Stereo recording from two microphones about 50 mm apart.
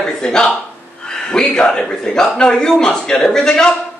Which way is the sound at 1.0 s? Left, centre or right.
Centre.